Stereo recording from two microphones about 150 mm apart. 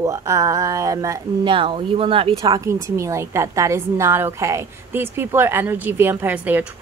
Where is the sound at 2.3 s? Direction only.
25° right (ahead or behind).